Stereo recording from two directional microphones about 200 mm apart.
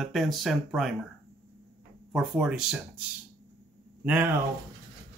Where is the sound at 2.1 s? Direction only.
Centre (ahead or behind).